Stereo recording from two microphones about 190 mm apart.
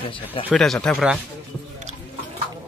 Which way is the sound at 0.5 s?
5° left (ahead or behind).